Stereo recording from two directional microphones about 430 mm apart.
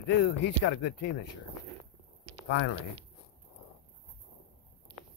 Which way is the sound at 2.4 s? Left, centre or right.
Left.